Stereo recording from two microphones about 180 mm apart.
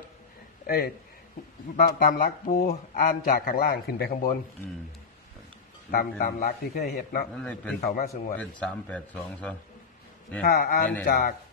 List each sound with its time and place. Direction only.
0.7 s a man's voice: 60° left (ahead or behind)
5.9 s a man's voice: 50° left (ahead or behind)
8.4 s a man's voice: 5° left (ahead or behind)
10.4 s a man's voice: 60° left (ahead or behind)